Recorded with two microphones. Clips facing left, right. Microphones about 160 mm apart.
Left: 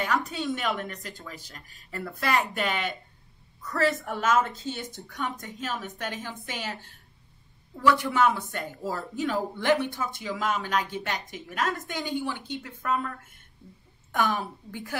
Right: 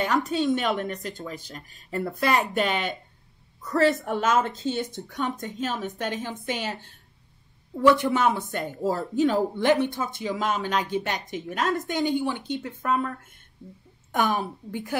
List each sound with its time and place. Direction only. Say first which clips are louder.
0.0 s speech: right 5 dB; 25° right (ahead or behind)
14.1 s speech: right 2 dB; 20° right (ahead or behind)